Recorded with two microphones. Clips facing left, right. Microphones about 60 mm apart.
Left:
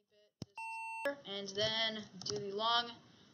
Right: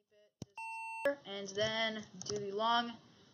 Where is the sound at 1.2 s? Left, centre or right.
Centre.